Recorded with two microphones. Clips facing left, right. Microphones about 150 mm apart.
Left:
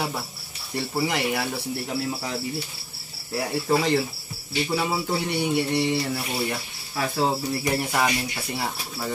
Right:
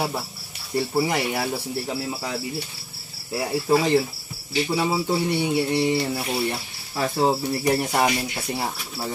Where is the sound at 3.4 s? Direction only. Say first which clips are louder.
Right 2 dB; 10° right (ahead or behind).